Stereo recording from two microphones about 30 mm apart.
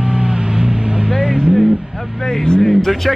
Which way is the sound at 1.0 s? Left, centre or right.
Centre.